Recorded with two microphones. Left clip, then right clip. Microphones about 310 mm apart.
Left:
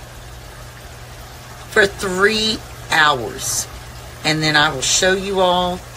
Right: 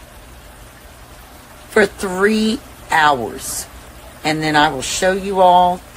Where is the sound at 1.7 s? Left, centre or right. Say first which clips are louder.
Even; right.